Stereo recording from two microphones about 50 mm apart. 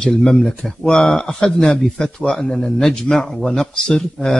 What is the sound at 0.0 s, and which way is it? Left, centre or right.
Speech, centre.